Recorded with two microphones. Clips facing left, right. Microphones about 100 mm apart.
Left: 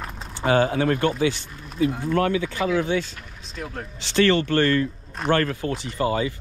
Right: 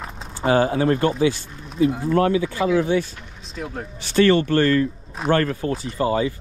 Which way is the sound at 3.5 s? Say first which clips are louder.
Right 3 dB; centre (ahead or behind).